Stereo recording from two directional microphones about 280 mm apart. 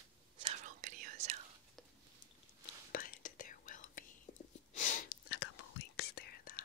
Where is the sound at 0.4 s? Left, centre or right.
Right.